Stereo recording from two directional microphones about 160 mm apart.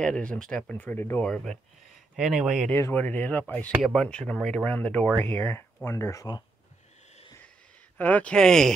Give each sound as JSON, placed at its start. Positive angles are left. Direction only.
{"t": 0.0, "sound": "speech", "side_deg": 5}
{"t": 2.7, "sound": "speech", "side_deg": 15}
{"t": 3.7, "sound": "speech", "side_deg": 0}
{"t": 8.0, "sound": "speech", "side_deg": 10}